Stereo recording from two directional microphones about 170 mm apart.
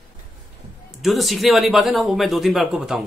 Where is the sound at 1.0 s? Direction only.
Centre (ahead or behind).